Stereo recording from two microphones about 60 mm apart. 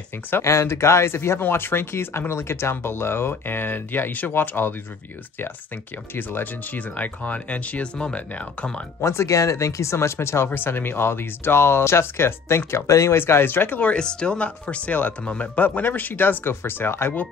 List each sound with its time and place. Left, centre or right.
0.4 s speech: left
6.1 s speech: left
9.0 s speech: left
13.1 s speech: left
13.9 s speech: centre; by 17.1 s left